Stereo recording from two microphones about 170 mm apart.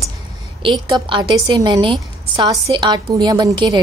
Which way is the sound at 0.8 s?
30° right (ahead or behind).